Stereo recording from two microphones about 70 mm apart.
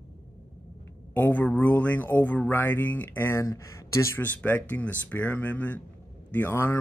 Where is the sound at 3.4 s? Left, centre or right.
Left.